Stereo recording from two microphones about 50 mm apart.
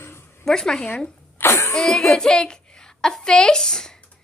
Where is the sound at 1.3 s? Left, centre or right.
Left.